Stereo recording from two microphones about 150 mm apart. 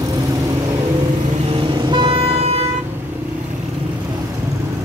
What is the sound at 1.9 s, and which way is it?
Vehicle, 35° right (ahead or behind).